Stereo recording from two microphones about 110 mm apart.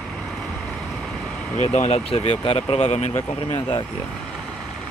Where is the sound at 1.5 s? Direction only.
90° left.